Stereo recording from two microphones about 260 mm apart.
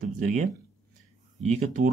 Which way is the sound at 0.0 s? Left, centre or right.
Right.